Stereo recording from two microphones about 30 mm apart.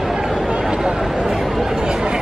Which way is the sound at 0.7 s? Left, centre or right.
Right.